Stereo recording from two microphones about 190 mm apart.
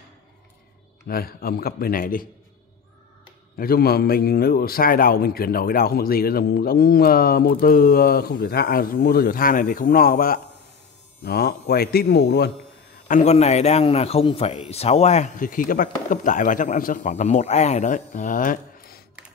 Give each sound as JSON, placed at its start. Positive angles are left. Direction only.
{"t": 1.0, "sound": "a man's voice", "side_deg": 50}
{"t": 3.5, "sound": "a man's voice", "side_deg": 50}
{"t": 13.1, "sound": "a man's voice", "side_deg": 35}